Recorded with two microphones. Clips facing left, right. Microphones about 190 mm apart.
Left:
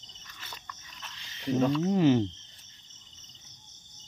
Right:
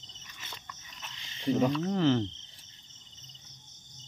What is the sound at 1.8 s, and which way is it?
Cricket, 15° left (ahead or behind).